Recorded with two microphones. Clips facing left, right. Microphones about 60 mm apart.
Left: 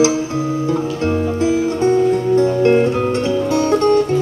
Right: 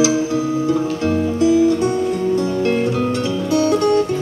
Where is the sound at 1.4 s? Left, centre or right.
Left.